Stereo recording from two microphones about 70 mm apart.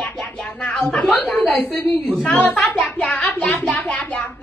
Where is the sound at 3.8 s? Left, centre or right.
Centre.